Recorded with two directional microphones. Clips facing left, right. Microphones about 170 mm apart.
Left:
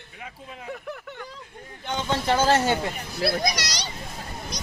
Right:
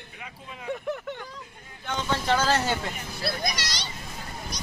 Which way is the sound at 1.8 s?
20° left (ahead or behind).